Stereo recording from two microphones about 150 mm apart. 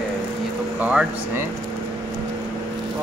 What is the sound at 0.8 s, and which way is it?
Speech, 5° right (ahead or behind).